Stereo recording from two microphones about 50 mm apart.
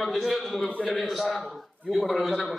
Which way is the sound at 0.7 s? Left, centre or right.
Left.